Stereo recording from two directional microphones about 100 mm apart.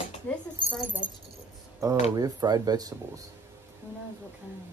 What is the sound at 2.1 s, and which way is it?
Speech, 40° right (ahead or behind).